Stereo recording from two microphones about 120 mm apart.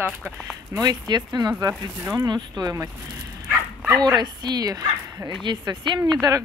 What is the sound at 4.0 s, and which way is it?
Speech, 35° right (ahead or behind).